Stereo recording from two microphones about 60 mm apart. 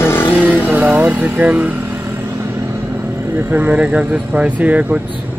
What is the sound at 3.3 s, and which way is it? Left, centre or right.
Speech, right.